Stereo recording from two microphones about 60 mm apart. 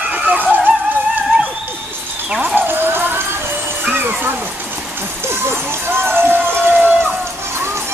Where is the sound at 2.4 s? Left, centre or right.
Right.